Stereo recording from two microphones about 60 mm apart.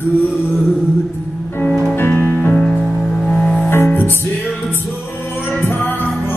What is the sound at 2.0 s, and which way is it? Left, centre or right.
Music, left.